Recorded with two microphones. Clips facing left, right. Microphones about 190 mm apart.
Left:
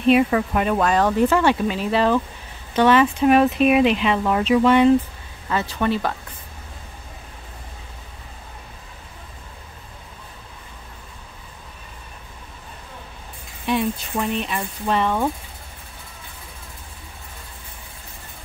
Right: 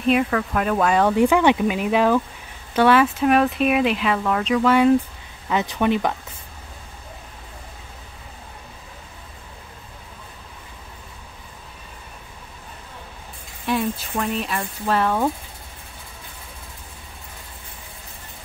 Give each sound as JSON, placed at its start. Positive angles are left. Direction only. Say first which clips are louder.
{"t": 0.3, "sound": "speech", "louder": "left 2 dB", "side_deg": 15}
{"t": 0.7, "sound": "speech", "louder": "right 2 dB", "side_deg": 0}
{"t": 0.9, "sound": "speech", "louder": "right 2 dB", "side_deg": -10}
{"t": 4.2, "sound": "speech", "louder": "left 3 dB", "side_deg": 10}
{"t": 4.6, "sound": "speech", "louder": "left 1 dB", "side_deg": -5}
{"t": 5.5, "sound": "speech", "louder": "right 2 dB", "side_deg": -15}
{"t": 13.7, "sound": "speech", "louder": "left 1 dB", "side_deg": 0}